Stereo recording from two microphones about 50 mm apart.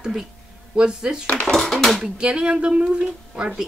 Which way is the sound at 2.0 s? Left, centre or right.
Right.